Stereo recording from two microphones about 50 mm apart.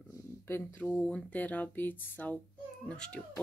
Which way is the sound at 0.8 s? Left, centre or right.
Left.